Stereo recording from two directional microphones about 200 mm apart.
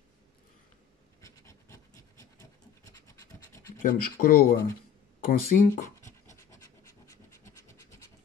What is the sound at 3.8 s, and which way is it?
Speech, 45° left (ahead or behind).